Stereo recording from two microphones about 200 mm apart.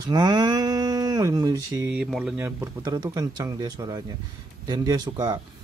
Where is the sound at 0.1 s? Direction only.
20° right (ahead or behind).